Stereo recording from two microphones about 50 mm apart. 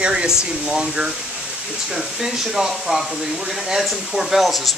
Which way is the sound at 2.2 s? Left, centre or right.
Centre.